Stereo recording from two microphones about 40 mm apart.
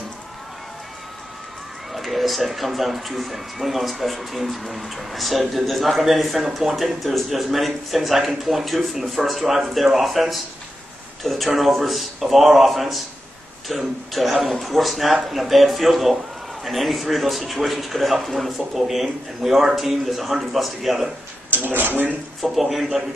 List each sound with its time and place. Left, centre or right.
1.9 s a man's voice: centre
21.6 s speech: right
22.4 s a man's voice: centre